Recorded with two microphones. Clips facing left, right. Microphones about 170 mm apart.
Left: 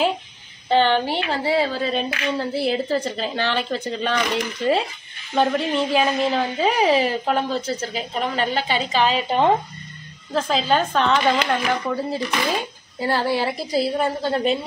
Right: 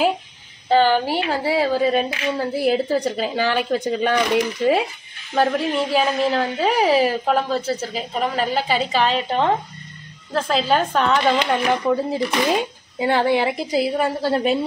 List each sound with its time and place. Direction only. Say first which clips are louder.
0.7 s a woman's voice: right 2 dB; 5° right (ahead or behind)
10.3 s a woman's voice: right 1 dB; centre (ahead or behind)
11.3 s a woman's voice: right 2 dB; 15° right (ahead or behind)